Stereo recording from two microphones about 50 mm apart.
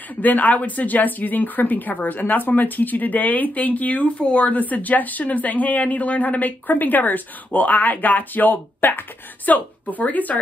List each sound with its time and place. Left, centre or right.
0.2 s speech: left